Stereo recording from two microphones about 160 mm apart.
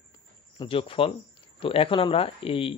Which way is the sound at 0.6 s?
35° left (ahead or behind).